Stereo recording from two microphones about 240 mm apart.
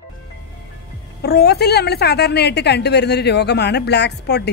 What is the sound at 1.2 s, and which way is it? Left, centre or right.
A woman's voice, left.